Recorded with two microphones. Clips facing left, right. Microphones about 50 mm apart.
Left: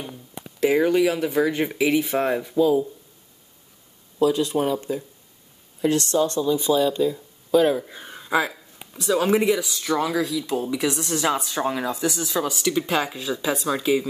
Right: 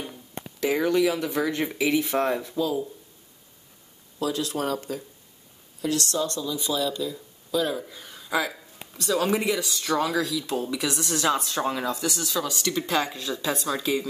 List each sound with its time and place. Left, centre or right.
0.6 s speech: centre
4.6 s speech: centre
8.9 s speech: centre